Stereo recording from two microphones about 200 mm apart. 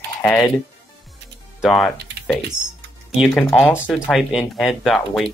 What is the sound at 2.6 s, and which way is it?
Speech, 20° right (ahead or behind).